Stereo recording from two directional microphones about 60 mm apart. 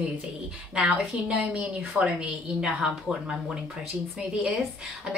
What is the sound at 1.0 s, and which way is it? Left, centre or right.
Speech, centre.